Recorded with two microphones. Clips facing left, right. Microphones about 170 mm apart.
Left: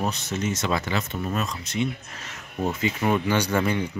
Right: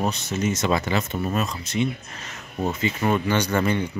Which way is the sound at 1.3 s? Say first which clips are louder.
Right 2 dB; 5° right (ahead or behind).